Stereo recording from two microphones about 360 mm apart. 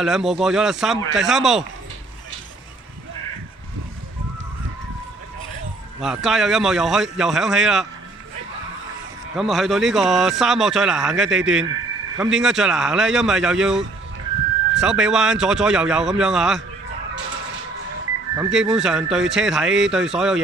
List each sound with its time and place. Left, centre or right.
0.0 s a man's voice: centre
5.9 s a man's voice: centre
9.3 s a man's voice: centre
18.4 s a man's voice: centre